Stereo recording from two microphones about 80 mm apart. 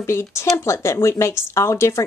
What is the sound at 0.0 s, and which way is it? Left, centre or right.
A woman's voice, left.